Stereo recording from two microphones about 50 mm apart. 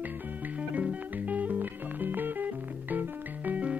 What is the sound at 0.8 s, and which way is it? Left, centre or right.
Music, right.